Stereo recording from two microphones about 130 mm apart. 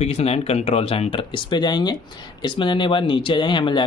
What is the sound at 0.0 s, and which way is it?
Speech, 55° left (ahead or behind).